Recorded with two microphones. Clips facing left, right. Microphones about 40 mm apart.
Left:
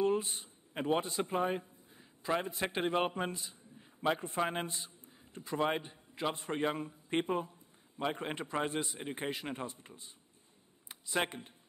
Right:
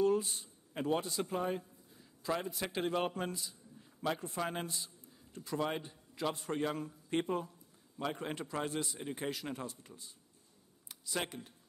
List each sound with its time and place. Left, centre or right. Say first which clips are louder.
0.0 s a man's voice: even; left